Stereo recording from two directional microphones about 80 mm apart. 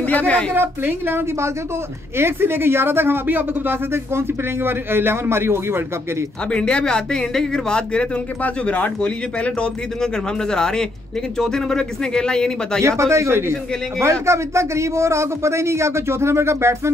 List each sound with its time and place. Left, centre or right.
0.0 s a woman's voice: centre
0.5 s speech: right
6.5 s speech: centre
12.8 s speech: right